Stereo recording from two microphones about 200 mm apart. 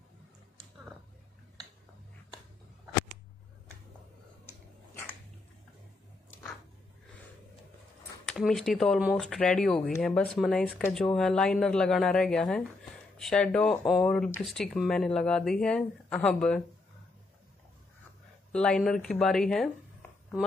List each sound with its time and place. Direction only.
8.3 s speech: centre (ahead or behind)
18.5 s speech: 5° left (ahead or behind)